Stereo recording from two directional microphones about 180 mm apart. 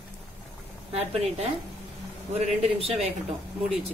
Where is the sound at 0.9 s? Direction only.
35° right (ahead or behind).